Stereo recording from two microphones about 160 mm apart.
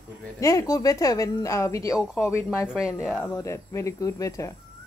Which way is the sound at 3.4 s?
20° left (ahead or behind).